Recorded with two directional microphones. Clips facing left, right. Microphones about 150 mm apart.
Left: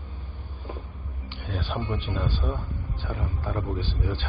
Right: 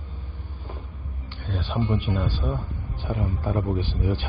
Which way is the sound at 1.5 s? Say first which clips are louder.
Right 1 dB; centre (ahead or behind).